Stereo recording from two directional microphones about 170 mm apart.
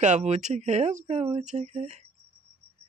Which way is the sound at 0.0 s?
40° right (ahead or behind).